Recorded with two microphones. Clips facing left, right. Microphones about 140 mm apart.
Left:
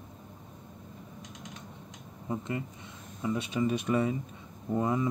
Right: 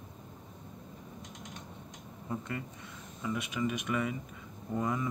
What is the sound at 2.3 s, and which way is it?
Speech, 20° left (ahead or behind).